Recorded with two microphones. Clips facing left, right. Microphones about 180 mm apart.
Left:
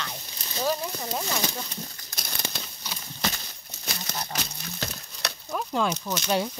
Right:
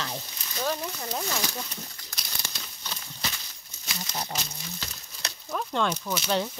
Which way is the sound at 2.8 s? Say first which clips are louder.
Right 2 dB; 10° left (ahead or behind).